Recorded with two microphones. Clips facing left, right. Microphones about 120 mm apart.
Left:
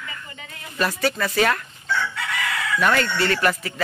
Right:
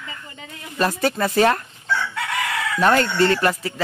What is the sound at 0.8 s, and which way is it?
Speech, 25° right (ahead or behind).